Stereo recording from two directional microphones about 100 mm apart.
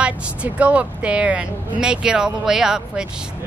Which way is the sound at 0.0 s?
10° right (ahead or behind).